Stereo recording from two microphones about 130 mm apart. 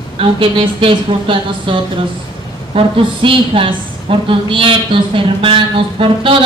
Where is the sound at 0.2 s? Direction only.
45° right (ahead or behind).